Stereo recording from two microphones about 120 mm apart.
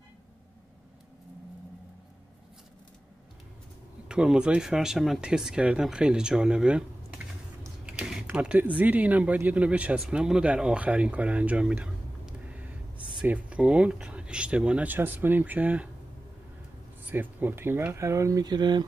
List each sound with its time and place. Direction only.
4.1 s speech: 5° right (ahead or behind)
7.8 s speech: 10° right (ahead or behind)
17.1 s speech: 15° right (ahead or behind); by 18.9 s 35° right (ahead or behind)